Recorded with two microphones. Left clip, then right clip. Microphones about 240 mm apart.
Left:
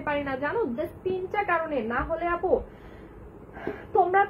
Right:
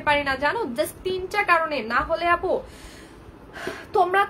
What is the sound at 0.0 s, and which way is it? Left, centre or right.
A woman's voice, centre.